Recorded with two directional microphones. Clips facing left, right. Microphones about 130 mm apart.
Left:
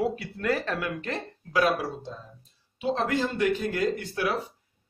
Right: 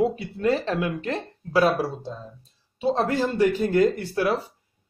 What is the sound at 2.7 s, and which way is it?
Speech, 35° right (ahead or behind).